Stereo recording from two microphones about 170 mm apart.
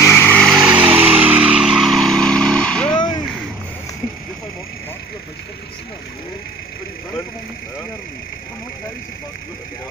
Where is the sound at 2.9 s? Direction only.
25° left (ahead or behind).